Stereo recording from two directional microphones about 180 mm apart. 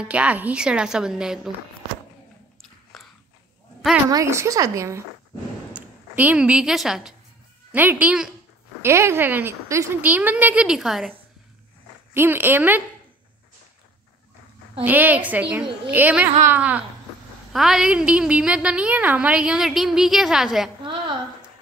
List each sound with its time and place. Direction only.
0.0 s a woman's voice: 5° right (ahead or behind)
2.6 s biting: centre (ahead or behind)
4.1 s a woman's voice: 15° right (ahead or behind)
12.1 s a woman's voice: 10° right (ahead or behind)
14.8 s a woman's voice: 10° right (ahead or behind)
20.8 s a sound: 25° right (ahead or behind)